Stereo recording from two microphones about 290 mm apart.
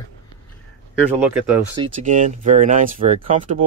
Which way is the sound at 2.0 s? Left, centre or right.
Right.